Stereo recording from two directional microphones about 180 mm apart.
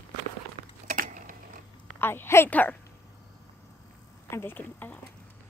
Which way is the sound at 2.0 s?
10° left (ahead or behind).